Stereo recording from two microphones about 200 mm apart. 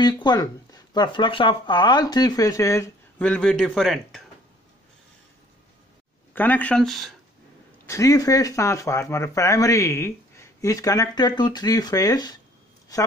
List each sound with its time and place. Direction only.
0.0 s speech: 20° left (ahead or behind); by 4.2 s centre (ahead or behind)
6.3 s speech: 10° left (ahead or behind)
7.8 s speech: 15° left (ahead or behind)